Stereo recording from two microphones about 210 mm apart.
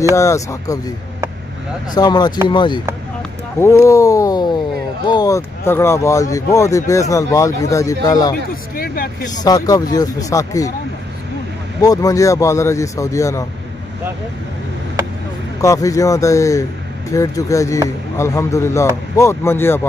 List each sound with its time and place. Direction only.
0.1 s speech: 15° left (ahead or behind)
2.0 s speech: 20° left (ahead or behind)
8.7 s speech: 45° left (ahead or behind)
9.4 s speech: 15° left (ahead or behind)
11.8 s speech: 15° left (ahead or behind)
15.6 s speech: 15° left (ahead or behind)